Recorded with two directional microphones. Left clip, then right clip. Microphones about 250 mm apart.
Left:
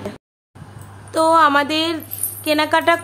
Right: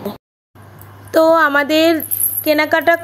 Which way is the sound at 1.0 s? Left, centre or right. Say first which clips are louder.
Right 2 dB; right.